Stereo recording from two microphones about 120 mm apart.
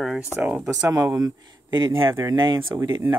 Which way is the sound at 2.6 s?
20° right (ahead or behind).